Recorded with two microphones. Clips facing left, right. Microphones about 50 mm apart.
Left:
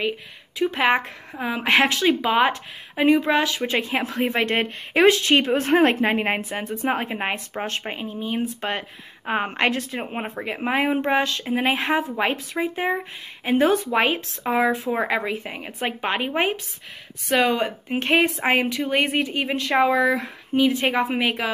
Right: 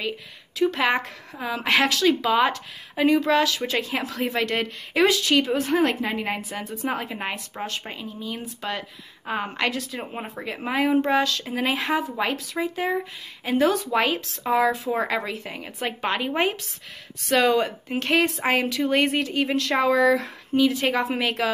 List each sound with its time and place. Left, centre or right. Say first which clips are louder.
0.6 s speech: left 2 dB; left